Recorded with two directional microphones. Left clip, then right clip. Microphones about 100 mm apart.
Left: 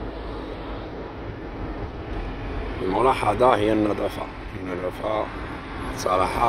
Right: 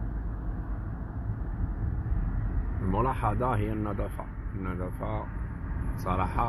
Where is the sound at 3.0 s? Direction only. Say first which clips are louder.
Left 12 dB; 15° left (ahead or behind).